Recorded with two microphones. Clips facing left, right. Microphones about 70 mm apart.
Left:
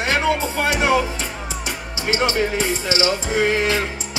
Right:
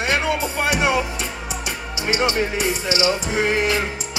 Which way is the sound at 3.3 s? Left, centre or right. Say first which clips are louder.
Left 3 dB; right.